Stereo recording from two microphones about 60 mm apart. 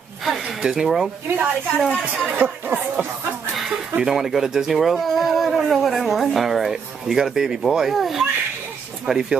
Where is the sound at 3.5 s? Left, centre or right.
Centre.